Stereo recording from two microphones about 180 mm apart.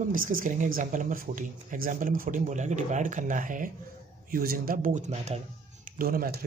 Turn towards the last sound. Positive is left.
turn(degrees=-55)  # may be behind; listen again after turning